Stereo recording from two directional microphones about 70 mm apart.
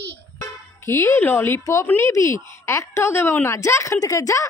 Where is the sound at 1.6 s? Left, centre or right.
Left.